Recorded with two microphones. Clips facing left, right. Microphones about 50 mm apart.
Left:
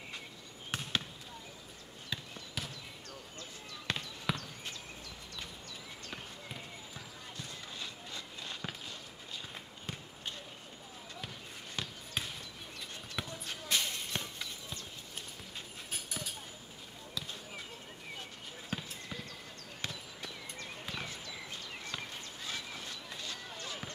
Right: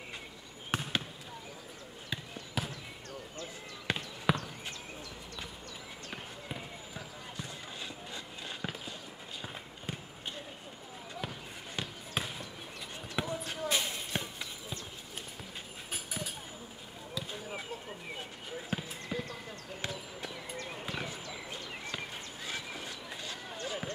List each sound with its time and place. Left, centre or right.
0.7 s basketball bounce: centre
2.6 s basketball bounce: centre
3.8 s basketball bounce: centre
7.3 s run: right
11.2 s basketball bounce: right
15.9 s a sound: centre
17.1 s basketball bounce: right
20.4 s basketball bounce: centre
22.5 s a sound: right
23.6 s basketball bounce: centre